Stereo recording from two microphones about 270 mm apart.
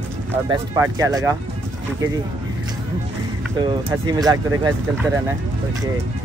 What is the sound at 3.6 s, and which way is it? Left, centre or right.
Speech, centre.